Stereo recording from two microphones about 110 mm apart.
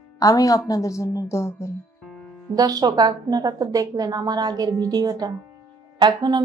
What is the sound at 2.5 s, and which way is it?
A woman's voice, 35° right (ahead or behind).